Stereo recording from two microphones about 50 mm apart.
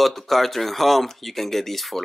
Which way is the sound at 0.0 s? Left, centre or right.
Centre.